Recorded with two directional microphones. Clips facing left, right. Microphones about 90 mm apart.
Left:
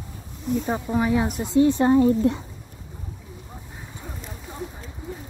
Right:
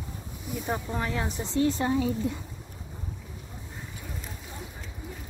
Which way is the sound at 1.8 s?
45° left (ahead or behind).